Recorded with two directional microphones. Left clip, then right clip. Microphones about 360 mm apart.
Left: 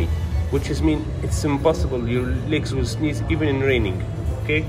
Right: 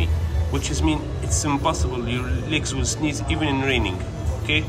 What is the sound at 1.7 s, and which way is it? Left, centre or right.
Speech, right.